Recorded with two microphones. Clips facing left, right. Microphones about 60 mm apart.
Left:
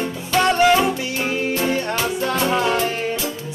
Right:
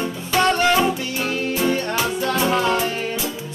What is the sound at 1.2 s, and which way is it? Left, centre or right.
Music, centre.